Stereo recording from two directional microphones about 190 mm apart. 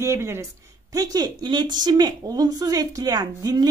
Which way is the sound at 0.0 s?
15° right (ahead or behind).